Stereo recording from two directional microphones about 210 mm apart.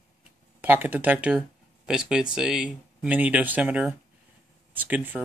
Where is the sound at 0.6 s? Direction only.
10° right (ahead or behind).